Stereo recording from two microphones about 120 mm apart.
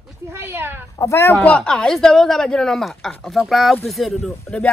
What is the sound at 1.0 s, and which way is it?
Speech, 20° left (ahead or behind).